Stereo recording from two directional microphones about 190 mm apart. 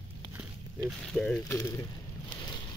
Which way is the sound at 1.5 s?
15° left (ahead or behind).